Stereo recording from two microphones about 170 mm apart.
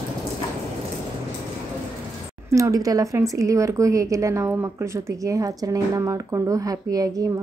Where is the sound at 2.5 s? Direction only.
20° right (ahead or behind).